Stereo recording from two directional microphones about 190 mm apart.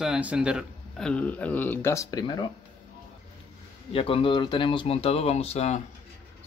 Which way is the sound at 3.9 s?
30° left (ahead or behind).